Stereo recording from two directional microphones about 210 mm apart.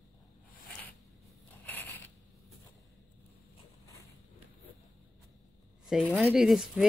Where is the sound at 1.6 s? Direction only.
10° left (ahead or behind).